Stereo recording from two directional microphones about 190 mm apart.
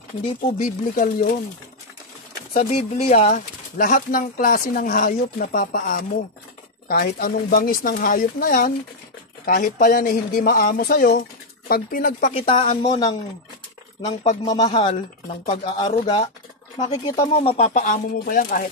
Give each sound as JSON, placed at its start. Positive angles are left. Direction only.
{"t": 0.6, "sound": "speech", "side_deg": 45}
{"t": 2.5, "sound": "speech", "side_deg": 35}
{"t": 14.2, "sound": "speech", "side_deg": 35}
{"t": 16.9, "sound": "speech", "side_deg": 20}
{"t": 17.3, "sound": "speech", "side_deg": 30}